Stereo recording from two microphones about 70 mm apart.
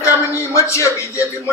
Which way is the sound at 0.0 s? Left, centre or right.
Left.